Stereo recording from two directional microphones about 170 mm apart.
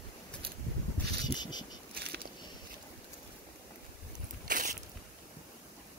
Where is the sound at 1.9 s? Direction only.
70° right (ahead or behind).